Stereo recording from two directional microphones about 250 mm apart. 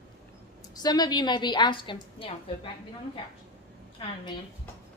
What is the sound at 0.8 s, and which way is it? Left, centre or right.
A woman's voice, centre.